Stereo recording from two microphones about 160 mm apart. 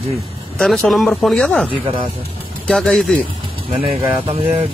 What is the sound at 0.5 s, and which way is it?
Speech, centre (ahead or behind).